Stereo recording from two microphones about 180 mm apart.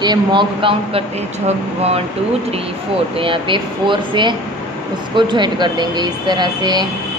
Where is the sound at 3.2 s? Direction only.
30° right (ahead or behind).